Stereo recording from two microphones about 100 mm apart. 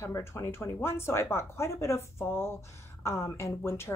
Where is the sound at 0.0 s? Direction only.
25° left (ahead or behind).